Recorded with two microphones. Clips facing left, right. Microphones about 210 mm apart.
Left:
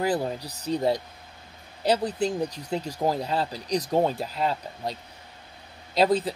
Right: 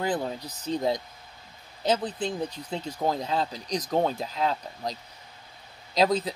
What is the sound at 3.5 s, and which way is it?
Speech, 35° left (ahead or behind).